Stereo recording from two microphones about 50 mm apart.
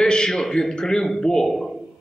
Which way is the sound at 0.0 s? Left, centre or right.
Centre.